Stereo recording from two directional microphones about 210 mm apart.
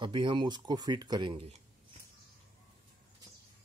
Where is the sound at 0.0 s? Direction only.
20° right (ahead or behind).